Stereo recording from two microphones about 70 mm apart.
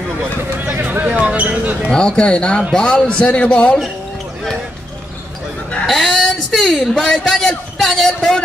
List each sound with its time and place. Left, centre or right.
0.7 s a sound: right
1.9 s a man's voice: centre
5.9 s a man's voice: centre